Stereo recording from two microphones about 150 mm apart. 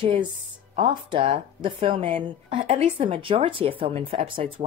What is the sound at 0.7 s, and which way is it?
Speech, 35° right (ahead or behind).